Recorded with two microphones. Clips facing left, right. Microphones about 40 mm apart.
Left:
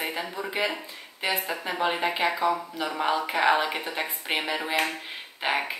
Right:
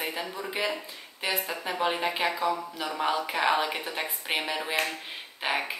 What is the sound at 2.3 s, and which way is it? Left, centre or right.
Speech, left.